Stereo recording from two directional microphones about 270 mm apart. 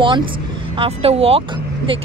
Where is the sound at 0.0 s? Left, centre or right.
Centre.